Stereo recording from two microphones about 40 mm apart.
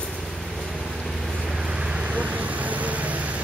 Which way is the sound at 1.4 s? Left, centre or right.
Centre.